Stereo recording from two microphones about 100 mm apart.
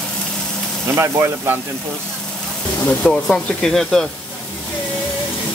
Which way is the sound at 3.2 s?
5° left (ahead or behind).